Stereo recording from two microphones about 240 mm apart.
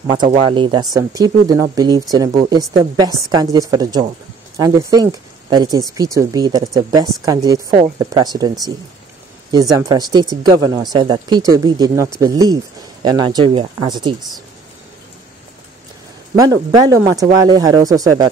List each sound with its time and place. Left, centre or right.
0.0 s a woman's voice: centre
9.5 s a woman's voice: centre
16.3 s a woman's voice: centre